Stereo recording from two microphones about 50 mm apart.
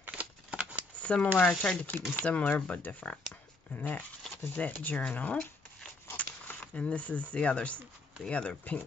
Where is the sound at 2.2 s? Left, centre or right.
Left.